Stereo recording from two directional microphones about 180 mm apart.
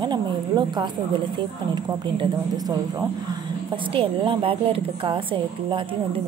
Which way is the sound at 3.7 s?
30° right (ahead or behind).